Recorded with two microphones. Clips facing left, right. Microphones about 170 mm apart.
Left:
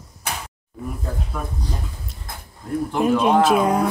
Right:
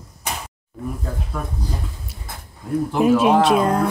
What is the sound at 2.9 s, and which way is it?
Speech, 5° right (ahead or behind).